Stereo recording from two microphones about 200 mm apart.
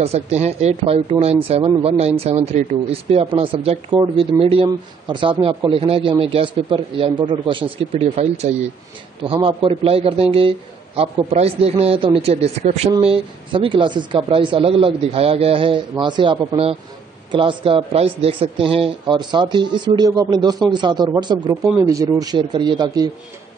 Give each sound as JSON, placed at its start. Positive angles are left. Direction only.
{"t": 0.0, "sound": "speech", "side_deg": -35}
{"t": 7.9, "sound": "speech", "side_deg": -35}